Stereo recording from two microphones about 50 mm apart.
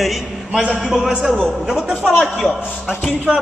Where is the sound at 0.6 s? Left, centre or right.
Centre.